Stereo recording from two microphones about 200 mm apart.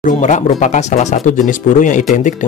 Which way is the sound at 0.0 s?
35° left (ahead or behind).